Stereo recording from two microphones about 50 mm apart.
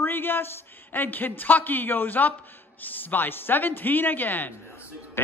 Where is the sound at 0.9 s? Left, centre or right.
Left.